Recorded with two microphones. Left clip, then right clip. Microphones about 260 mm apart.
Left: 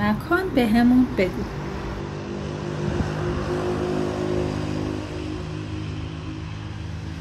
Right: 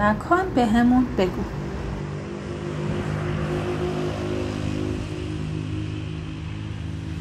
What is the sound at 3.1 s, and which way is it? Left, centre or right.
Vehicle, left.